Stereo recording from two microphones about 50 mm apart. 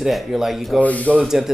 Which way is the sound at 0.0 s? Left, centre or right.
Centre.